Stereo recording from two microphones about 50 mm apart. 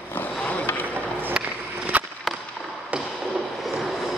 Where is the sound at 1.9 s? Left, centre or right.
Right.